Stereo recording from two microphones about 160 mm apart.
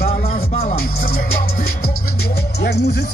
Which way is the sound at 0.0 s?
55° left (ahead or behind).